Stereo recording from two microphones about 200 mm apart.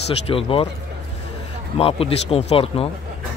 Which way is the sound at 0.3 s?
25° left (ahead or behind).